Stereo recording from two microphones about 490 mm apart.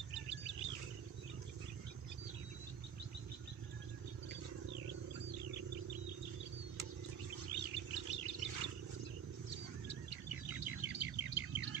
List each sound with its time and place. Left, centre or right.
0.1 s bird: right
7.5 s chirp: right
8.5 s a sound: right
9.8 s bird: right